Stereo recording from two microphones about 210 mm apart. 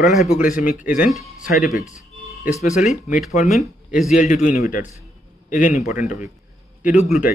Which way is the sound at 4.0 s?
35° left (ahead or behind).